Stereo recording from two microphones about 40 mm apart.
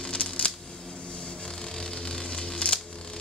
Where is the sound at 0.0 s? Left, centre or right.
Left.